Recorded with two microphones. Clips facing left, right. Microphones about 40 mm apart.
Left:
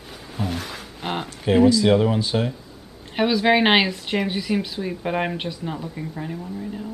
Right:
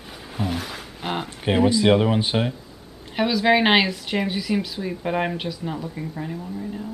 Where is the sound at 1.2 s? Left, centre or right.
Right.